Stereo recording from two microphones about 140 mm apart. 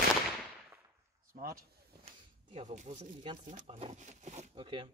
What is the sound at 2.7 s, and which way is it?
Speech, 55° right (ahead or behind).